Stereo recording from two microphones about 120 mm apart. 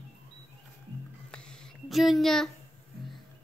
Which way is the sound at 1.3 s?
5° left (ahead or behind).